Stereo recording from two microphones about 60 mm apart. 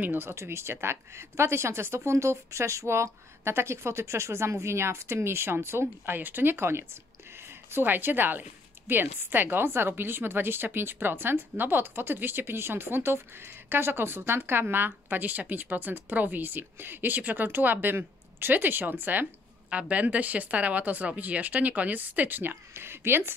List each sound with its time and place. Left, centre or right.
0.0 s speech: right